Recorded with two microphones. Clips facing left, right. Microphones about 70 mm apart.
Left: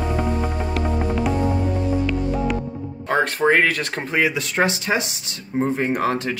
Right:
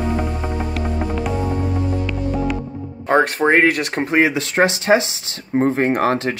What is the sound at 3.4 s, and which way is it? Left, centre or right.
Speech, right.